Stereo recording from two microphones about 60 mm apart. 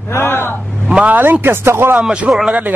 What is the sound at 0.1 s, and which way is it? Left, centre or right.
Speech, left.